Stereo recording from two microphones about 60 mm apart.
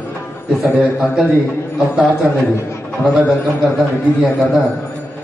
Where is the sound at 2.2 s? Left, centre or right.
Centre.